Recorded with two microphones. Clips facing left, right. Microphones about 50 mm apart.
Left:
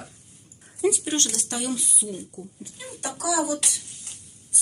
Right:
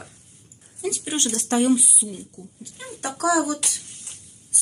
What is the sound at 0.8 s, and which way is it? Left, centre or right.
Speech, left.